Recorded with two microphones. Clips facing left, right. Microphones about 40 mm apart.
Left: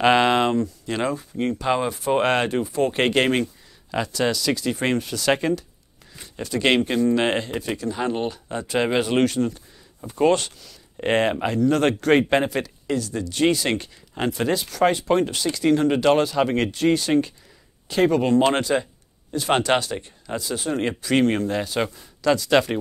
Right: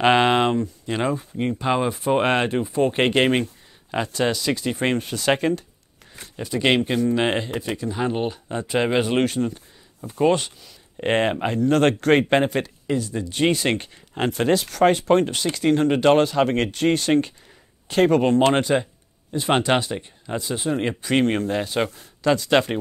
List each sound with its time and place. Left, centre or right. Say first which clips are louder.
0.0 s speech: even; right
3.9 s speech: even; right
6.4 s speech: even; centre
9.2 s speech: left 1 dB; right
11.6 s speech: right 2 dB; right
12.8 s speech: right 1 dB; centre
13.5 s speech: even; right
18.5 s speech: right 2 dB; right
20.6 s speech: right 1 dB; centre
21.0 s speech: left 1 dB; right
21.8 s speech: right 1 dB; centre
22.2 s speech: even; right